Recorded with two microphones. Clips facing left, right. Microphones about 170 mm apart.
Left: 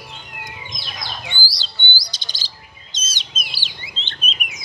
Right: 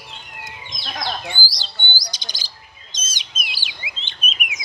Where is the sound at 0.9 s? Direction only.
50° right (ahead or behind).